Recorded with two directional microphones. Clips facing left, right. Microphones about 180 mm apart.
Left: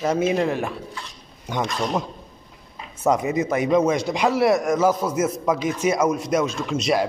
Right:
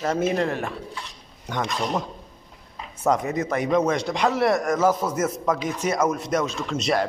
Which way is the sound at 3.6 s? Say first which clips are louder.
Left 2 dB; 5° left (ahead or behind).